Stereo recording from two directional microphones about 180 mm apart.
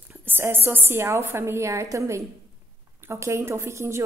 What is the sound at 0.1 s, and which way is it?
A woman's voice, 10° right (ahead or behind).